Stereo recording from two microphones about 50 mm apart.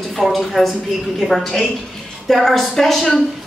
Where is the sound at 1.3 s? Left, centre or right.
Centre.